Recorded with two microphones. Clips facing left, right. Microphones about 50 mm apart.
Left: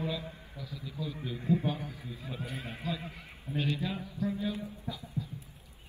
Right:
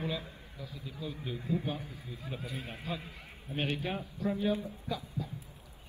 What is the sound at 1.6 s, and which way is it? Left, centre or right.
A man's voice, left.